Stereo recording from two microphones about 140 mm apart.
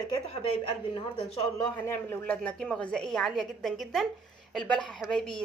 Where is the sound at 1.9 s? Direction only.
10° left (ahead or behind).